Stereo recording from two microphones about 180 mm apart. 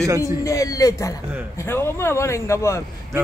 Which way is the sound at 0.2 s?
20° left (ahead or behind).